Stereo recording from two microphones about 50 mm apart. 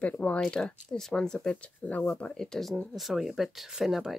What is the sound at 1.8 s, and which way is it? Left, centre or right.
Speech, left.